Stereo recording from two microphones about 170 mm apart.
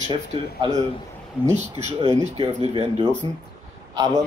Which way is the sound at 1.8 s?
40° right (ahead or behind).